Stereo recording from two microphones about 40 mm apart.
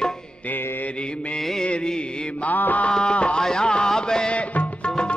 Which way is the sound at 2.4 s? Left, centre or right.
Left.